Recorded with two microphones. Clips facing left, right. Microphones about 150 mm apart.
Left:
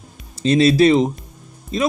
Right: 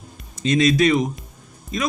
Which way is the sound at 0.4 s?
30° left (ahead or behind).